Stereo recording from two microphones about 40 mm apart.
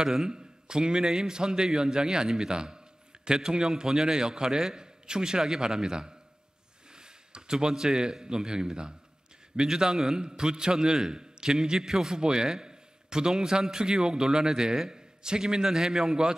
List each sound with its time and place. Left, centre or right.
0.0 s a man's voice: centre